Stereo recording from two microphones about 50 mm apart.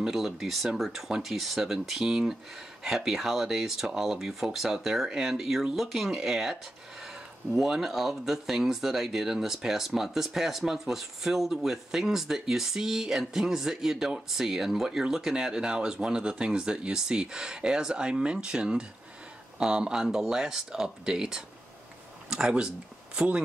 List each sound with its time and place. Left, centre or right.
0.0 s speech: centre